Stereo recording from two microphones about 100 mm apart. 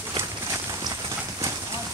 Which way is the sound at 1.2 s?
25° right (ahead or behind).